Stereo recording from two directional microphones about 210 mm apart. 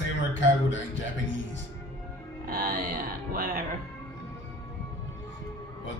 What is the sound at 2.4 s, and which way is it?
Speech, 45° right (ahead or behind).